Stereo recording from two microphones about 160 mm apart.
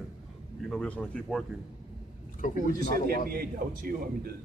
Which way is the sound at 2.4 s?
55° left (ahead or behind).